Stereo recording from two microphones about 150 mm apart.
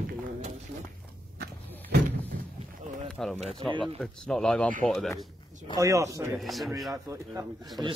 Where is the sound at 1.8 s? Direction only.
90° right.